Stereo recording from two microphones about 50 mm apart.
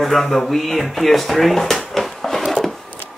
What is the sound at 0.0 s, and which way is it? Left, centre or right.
Speech, centre.